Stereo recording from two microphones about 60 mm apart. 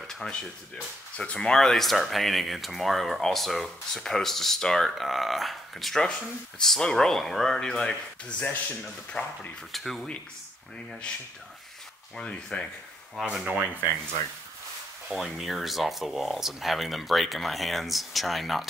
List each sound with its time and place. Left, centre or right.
0.0 s a sound: centre
1.1 s speech: centre
9.7 s speech: centre
12.2 s speech: centre
13.3 s speech: centre
15.1 s speech: centre